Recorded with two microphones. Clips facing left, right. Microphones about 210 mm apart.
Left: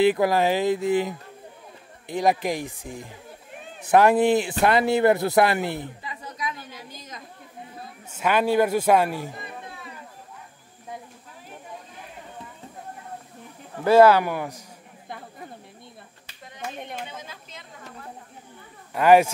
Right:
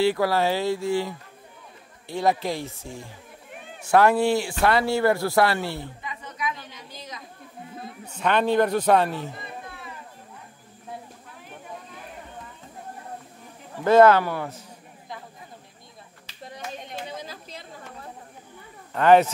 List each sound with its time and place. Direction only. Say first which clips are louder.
0.0 s a man's voice: left 2 dB; 20° left (ahead or behind)
6.0 s chatter: right 1 dB; 35° left (ahead or behind)
8.1 s a man's voice: even; 5° left (ahead or behind)
13.8 s a man's voice: even; 10° left (ahead or behind)
17.1 s chatter: right 4 dB; 35° right (ahead or behind)
18.9 s a man's voice: even; 10° left (ahead or behind)